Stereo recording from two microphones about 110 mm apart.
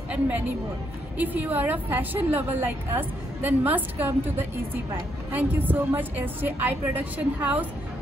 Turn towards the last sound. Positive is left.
turn(degrees=-15)  # may be behind; listen again after turning